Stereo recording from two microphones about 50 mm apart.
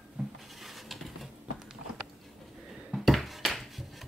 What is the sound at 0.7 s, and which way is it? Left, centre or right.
Patter, centre.